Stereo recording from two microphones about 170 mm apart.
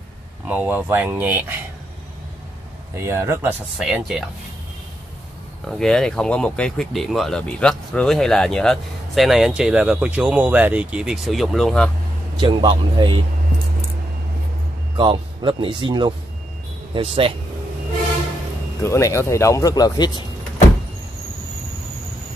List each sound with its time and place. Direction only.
0.5 s speech: 10° right (ahead or behind)
2.9 s speech: 15° right (ahead or behind)
3.7 s speech: 5° right (ahead or behind)
5.7 s speech: centre (ahead or behind)
12.4 s speech: 30° right (ahead or behind)
15.0 s speech: 25° right (ahead or behind)
18.8 s speech: 15° left (ahead or behind)